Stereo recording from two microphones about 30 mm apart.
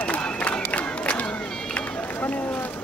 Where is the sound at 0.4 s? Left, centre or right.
Left.